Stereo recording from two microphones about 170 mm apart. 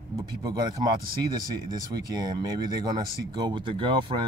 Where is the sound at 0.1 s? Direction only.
20° right (ahead or behind).